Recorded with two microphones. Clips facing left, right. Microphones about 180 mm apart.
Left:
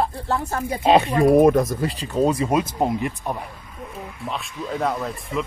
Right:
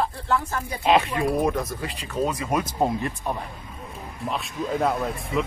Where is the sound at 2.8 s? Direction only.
15° left (ahead or behind).